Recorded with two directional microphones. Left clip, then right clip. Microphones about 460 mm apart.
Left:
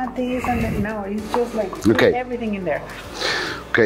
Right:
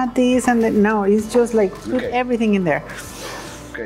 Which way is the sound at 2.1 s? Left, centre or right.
Right.